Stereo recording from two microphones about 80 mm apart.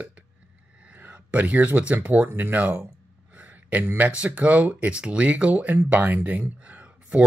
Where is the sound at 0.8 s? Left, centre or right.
Centre.